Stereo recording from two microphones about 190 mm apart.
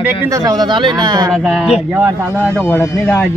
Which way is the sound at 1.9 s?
10° right (ahead or behind).